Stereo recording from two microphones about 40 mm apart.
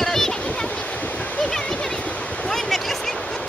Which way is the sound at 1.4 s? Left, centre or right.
Centre.